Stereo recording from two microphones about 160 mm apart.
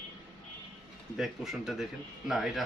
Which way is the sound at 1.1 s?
Centre (ahead or behind).